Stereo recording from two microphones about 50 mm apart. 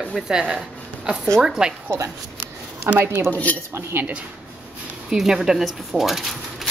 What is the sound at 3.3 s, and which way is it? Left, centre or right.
Speech, left.